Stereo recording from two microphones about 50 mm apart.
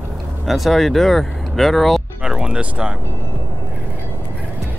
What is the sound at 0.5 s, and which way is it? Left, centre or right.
Speech, centre.